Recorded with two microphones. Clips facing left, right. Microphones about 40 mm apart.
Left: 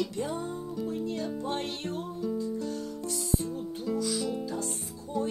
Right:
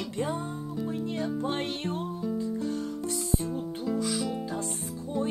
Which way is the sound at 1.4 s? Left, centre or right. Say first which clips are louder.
Right 2 dB; right.